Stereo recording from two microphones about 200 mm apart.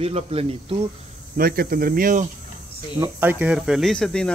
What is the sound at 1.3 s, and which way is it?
Speech, 50° right (ahead or behind).